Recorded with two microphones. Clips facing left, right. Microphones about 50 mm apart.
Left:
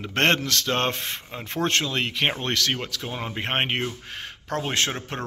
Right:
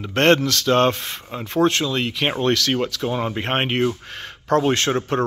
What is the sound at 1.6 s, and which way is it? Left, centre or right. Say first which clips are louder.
Speech: right 5 dB; left.